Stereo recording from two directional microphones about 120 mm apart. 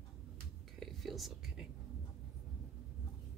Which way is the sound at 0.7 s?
Centre (ahead or behind).